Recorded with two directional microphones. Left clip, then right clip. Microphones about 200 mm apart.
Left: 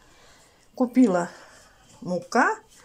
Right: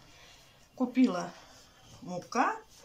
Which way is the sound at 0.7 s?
35° left (ahead or behind).